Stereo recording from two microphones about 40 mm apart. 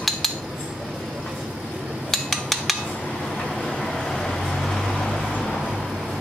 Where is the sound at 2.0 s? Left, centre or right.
Centre.